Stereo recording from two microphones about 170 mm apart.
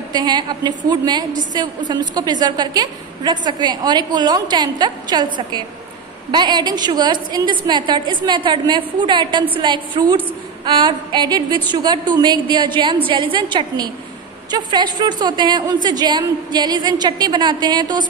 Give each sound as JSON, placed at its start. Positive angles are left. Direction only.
{"t": 0.1, "sound": "a woman's voice", "side_deg": -25}